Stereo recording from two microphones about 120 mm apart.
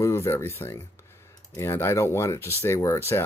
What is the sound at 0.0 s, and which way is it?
Speech, 20° left (ahead or behind).